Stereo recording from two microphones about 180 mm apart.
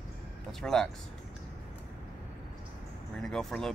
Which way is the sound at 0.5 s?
5° left (ahead or behind).